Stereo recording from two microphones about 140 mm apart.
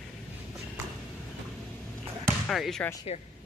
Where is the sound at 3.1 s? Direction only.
55° left (ahead or behind).